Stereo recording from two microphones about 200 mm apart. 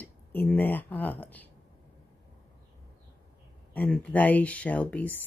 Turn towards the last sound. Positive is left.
turn(degrees=5)  # may be behind; listen again after turning